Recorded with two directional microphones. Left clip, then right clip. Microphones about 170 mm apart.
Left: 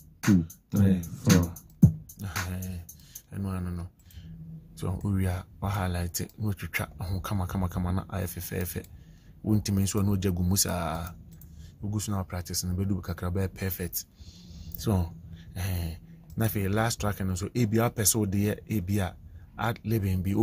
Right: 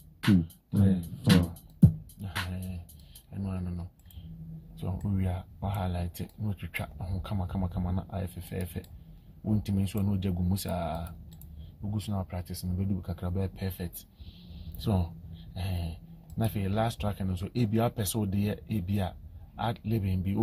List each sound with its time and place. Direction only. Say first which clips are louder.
0.7 s speech: left 3 dB; 35° left (ahead or behind)
2.1 s music: left 1 dB; 35° left (ahead or behind)
3.3 s a sound: left 2 dB; 30° left (ahead or behind)
4.7 s speech: left 3 dB; 35° left (ahead or behind)
14.8 s speech: left 2 dB; 25° left (ahead or behind)